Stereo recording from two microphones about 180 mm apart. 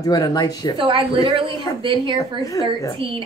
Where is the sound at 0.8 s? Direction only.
30° right (ahead or behind).